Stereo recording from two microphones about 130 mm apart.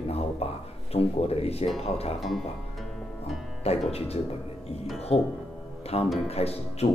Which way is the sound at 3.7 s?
50° left (ahead or behind).